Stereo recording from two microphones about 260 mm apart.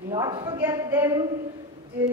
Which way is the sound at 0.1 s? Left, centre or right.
Centre.